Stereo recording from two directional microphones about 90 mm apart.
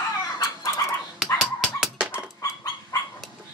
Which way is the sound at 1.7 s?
Centre (ahead or behind).